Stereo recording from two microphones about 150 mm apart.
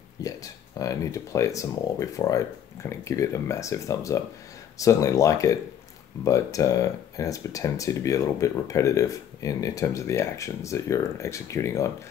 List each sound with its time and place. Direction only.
0.2 s speech: 20° left (ahead or behind)